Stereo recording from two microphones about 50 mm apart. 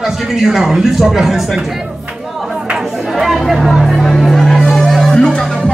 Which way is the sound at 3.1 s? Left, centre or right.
Centre.